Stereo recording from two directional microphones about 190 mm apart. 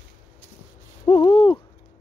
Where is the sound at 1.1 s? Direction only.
25° left (ahead or behind).